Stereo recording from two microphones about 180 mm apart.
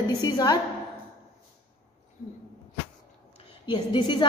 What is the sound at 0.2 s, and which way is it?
Speech, 20° left (ahead or behind).